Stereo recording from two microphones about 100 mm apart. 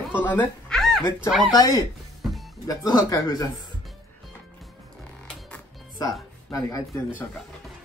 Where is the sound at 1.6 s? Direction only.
40° left (ahead or behind).